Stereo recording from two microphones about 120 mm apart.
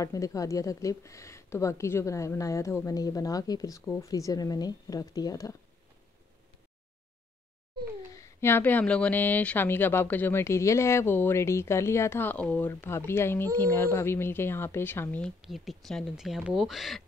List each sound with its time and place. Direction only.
0.0 s speech: 25° left (ahead or behind)
8.2 s speech: 20° left (ahead or behind)
15.4 s speech: centre (ahead or behind)